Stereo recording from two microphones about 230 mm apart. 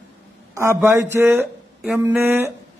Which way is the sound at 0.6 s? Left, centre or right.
Centre.